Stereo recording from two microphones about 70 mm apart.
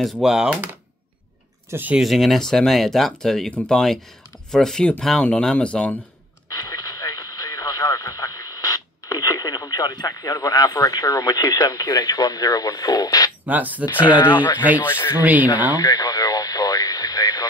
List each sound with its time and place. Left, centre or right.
0.0 s speech: centre
1.7 s speech: right
2.0 s speech: centre
6.7 s radio: left
13.5 s speech: right
14.0 s speech: left
14.8 s speech: left
15.7 s radio: left